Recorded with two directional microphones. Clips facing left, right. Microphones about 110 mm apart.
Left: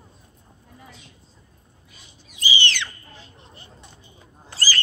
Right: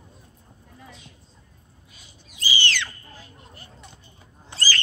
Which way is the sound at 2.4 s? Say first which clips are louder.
Left 1 dB; 20° left (ahead or behind).